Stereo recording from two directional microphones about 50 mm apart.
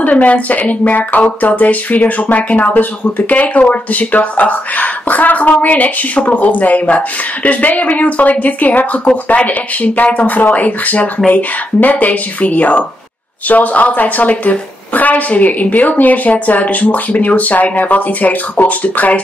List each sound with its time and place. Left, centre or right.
0.0 s speech: left